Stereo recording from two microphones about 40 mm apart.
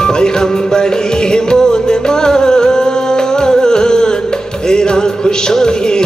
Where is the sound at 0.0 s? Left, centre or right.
Centre.